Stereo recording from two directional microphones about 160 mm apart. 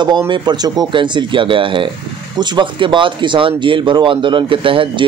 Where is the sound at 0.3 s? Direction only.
25° right (ahead or behind).